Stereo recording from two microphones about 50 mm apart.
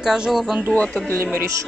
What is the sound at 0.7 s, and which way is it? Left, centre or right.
Speech, left.